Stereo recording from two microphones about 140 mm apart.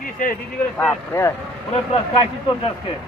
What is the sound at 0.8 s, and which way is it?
Speech, 10° left (ahead or behind).